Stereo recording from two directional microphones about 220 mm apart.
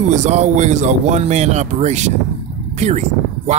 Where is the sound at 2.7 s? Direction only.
30° right (ahead or behind).